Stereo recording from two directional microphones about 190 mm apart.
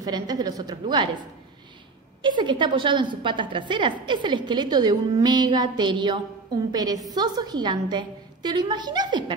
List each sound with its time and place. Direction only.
0.0 s a woman's voice: 20° right (ahead or behind)
2.2 s a woman's voice: 25° right (ahead or behind)